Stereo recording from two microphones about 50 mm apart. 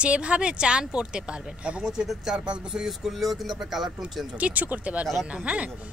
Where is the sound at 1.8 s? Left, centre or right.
Centre.